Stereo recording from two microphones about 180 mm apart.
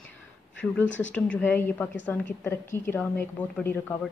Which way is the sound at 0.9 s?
90° left.